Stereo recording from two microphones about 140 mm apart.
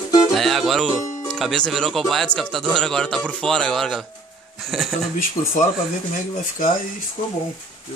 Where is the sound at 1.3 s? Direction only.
5° left (ahead or behind).